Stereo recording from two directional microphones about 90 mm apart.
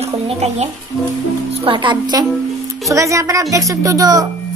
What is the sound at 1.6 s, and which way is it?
Speech, 60° right (ahead or behind).